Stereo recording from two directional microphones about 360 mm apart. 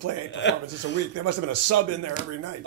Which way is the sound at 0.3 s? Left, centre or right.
Left.